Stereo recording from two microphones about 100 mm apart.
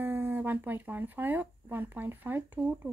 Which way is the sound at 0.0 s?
20° right (ahead or behind).